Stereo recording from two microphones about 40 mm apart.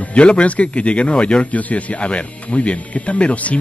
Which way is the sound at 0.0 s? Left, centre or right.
Left.